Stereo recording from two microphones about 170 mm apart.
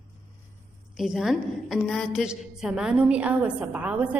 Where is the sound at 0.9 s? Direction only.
5° right (ahead or behind).